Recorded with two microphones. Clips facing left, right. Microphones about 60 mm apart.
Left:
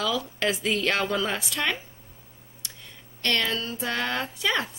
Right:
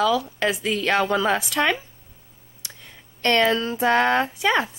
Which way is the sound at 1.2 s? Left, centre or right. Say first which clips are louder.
Right 7 dB; right.